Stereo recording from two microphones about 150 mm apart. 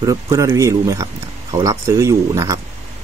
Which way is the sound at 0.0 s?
20° right (ahead or behind).